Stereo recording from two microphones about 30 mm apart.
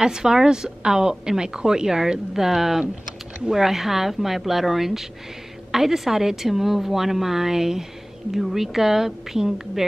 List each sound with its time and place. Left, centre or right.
0.0 s a woman's voice: right